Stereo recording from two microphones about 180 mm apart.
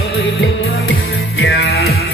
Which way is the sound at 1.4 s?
70° left (ahead or behind).